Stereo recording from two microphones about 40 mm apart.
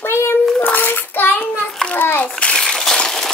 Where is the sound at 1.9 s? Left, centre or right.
Left.